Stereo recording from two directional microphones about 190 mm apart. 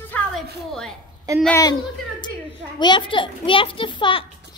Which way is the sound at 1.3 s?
20° right (ahead or behind).